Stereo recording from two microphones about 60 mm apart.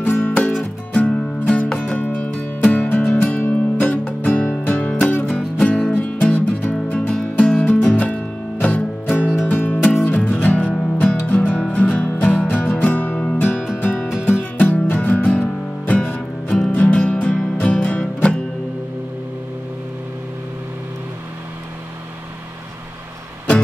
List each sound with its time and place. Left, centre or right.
0.2 s music: centre
2.0 s music: left
5.7 s music: left
16.4 s music: centre